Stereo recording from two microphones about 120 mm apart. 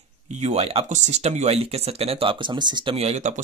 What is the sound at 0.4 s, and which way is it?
Speech, 65° right (ahead or behind).